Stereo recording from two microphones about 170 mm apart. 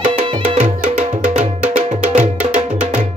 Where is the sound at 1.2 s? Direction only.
45° right (ahead or behind).